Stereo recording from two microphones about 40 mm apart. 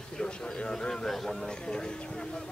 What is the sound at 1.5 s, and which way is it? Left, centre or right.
Speech, centre.